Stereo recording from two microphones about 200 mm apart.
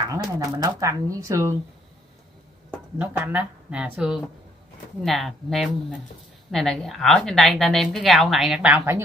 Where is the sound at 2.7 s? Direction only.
10° right (ahead or behind).